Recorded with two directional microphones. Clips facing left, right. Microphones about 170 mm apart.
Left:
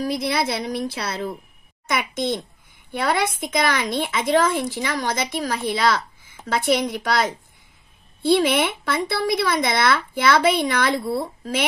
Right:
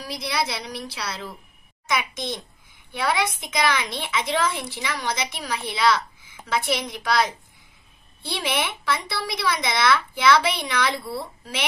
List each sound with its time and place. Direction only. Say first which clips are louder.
0.0 s a woman's voice: left 5 dB; 50° left (ahead or behind)